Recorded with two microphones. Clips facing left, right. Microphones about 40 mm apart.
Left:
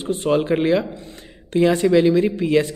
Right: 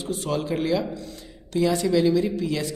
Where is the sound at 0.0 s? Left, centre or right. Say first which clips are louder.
Left 7 dB; left.